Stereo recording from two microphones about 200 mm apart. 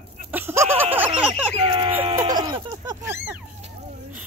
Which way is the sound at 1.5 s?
25° right (ahead or behind).